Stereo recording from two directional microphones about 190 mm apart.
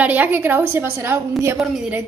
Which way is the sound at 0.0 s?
10° right (ahead or behind).